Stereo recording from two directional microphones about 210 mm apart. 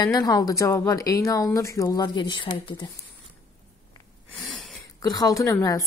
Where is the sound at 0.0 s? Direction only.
15° left (ahead or behind).